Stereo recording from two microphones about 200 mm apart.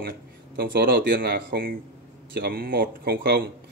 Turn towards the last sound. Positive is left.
turn(degrees=-50)  # may be behind; listen again after turning